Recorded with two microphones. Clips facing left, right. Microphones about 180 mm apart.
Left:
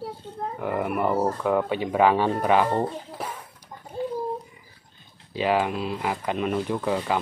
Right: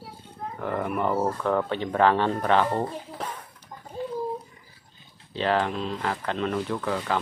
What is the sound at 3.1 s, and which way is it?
Speech, 10° left (ahead or behind).